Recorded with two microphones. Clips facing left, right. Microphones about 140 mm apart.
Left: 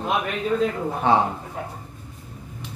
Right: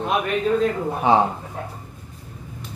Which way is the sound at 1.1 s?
15° right (ahead or behind).